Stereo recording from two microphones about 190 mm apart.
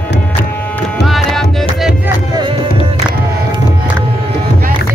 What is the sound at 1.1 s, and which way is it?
Music, centre (ahead or behind).